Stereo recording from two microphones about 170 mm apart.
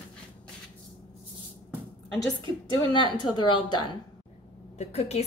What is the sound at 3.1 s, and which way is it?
Speech, 25° left (ahead or behind).